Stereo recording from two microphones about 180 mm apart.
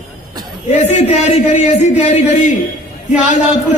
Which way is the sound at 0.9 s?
40° left (ahead or behind).